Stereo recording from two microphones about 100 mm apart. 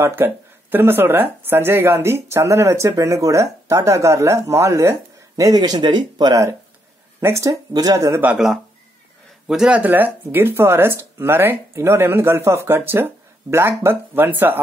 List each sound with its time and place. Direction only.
0.0 s speech: 20° right (ahead or behind); by 6.5 s 40° right (ahead or behind)
7.2 s speech: 30° right (ahead or behind)
8.1 s speech: 20° right (ahead or behind)
9.5 s speech: 5° right (ahead or behind)
9.8 s speech: 20° right (ahead or behind)